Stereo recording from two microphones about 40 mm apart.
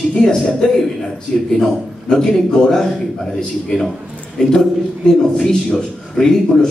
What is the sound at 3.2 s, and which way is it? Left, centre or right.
Speech, centre.